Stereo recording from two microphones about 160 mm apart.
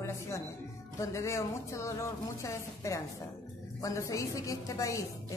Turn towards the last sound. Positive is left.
turn(degrees=20)  # may be behind; listen again after turning